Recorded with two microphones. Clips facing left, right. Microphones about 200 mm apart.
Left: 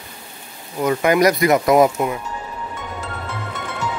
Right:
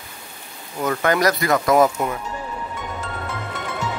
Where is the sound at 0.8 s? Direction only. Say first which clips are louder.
Left 4 dB; 15° left (ahead or behind).